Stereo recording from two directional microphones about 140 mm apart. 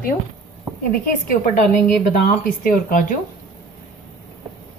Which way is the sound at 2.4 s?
75° left (ahead or behind).